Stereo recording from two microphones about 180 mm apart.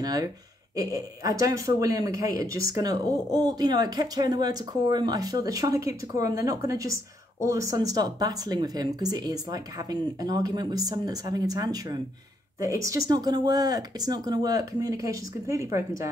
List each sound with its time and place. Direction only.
0.0 s speech: 20° right (ahead or behind)